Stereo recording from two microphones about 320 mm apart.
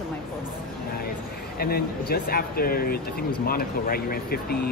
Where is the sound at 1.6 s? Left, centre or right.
Left.